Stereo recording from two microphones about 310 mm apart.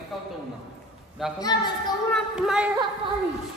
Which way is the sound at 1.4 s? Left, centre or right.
Centre.